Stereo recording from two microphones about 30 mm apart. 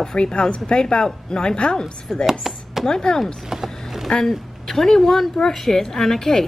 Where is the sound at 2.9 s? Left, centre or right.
Left.